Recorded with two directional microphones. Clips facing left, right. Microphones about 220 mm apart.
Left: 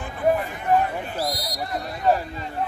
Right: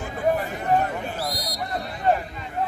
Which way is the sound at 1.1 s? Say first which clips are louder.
Left 2 dB; 40° left (ahead or behind).